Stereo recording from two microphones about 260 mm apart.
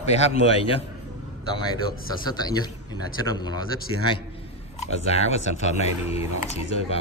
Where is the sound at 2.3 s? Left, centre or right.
Centre.